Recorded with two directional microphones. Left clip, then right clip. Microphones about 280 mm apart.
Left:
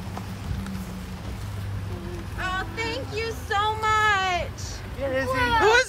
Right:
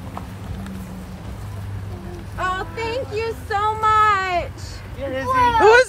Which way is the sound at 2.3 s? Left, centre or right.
Centre.